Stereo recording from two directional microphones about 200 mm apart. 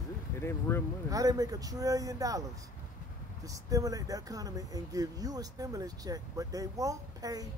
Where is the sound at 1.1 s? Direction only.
20° right (ahead or behind).